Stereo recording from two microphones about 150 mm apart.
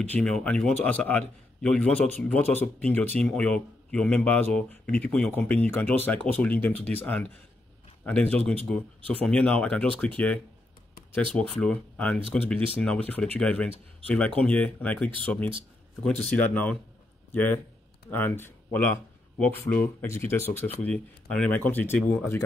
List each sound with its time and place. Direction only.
0.0 s speech: 10° left (ahead or behind)